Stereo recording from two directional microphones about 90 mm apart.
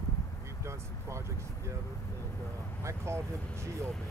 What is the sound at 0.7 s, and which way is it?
Vehicle, 30° right (ahead or behind).